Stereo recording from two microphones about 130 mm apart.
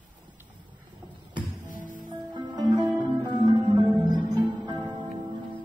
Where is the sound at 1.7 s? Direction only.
90° left.